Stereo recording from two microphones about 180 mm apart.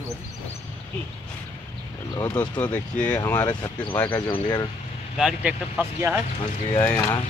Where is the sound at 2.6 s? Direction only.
10° left (ahead or behind).